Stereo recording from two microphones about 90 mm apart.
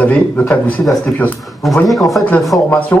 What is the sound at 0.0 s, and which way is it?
Speech, 15° left (ahead or behind).